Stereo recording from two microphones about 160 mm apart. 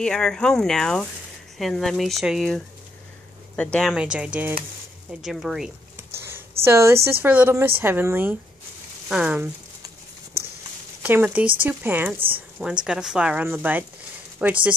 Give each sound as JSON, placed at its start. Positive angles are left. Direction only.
{"t": 0.0, "sound": "speech", "side_deg": 5}
{"t": 3.9, "sound": "speech", "side_deg": -5}
{"t": 5.9, "sound": "whispering", "side_deg": -15}
{"t": 6.6, "sound": "speech", "side_deg": -15}
{"t": 11.0, "sound": "speech", "side_deg": -10}